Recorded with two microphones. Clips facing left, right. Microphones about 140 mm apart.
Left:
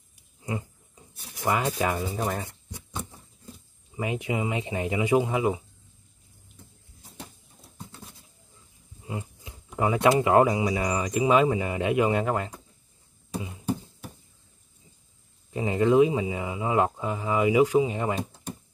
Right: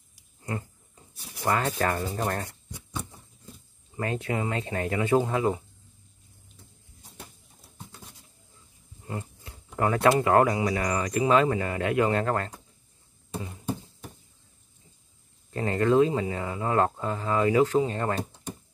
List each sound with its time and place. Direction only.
0.4 s speech: 15° left (ahead or behind)
3.9 s speech: 15° left (ahead or behind)
9.0 s speech: 10° left (ahead or behind)
15.5 s speech: 15° left (ahead or behind)